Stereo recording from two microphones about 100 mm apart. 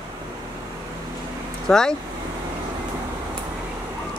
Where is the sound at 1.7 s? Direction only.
5° left (ahead or behind).